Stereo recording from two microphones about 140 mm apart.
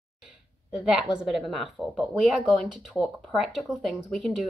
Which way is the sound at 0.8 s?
5° right (ahead or behind).